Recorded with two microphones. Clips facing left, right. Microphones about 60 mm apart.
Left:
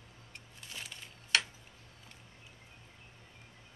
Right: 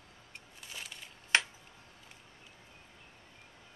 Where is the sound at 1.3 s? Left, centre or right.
Right.